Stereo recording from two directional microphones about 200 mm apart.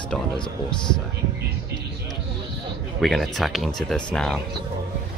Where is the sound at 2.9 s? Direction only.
Centre (ahead or behind).